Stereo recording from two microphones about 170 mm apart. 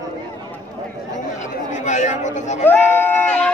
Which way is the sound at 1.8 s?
45° left (ahead or behind).